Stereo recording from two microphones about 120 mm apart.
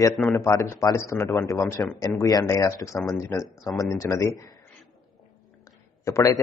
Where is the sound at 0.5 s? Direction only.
30° left (ahead or behind).